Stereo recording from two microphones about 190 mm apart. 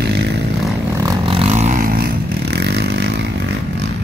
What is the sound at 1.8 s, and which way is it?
Vehicle, 50° right (ahead or behind).